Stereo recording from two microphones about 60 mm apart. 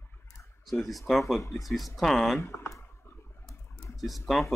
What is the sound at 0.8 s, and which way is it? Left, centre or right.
Speech, centre.